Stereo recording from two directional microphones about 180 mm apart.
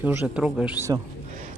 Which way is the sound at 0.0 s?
5° right (ahead or behind).